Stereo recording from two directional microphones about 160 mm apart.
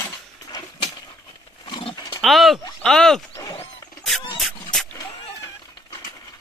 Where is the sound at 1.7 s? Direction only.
30° left (ahead or behind).